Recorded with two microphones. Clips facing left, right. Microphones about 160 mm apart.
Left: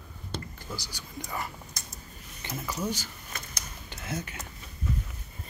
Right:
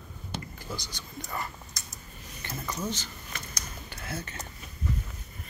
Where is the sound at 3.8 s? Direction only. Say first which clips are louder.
Left 3 dB; 20° left (ahead or behind).